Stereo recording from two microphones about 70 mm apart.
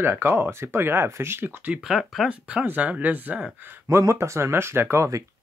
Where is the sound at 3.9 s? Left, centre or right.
Right.